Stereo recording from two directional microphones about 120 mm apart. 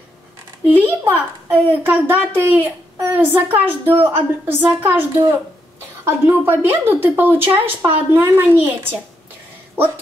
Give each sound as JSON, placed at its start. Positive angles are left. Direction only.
{"t": 0.7, "sound": "a woman's voice", "side_deg": -15}